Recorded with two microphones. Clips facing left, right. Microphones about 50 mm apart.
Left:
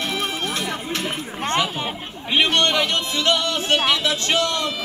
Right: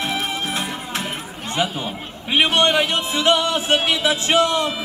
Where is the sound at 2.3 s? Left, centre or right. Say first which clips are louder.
Right 2 dB; centre.